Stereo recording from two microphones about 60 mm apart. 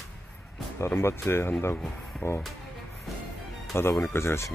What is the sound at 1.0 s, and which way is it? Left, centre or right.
Speech, left.